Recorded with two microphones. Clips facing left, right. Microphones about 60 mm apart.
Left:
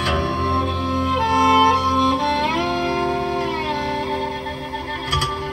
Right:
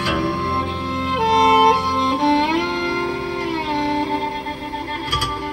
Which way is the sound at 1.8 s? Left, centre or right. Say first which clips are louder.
Left 1 dB; right.